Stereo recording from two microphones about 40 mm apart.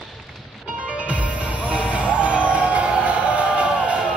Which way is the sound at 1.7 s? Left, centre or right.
Right.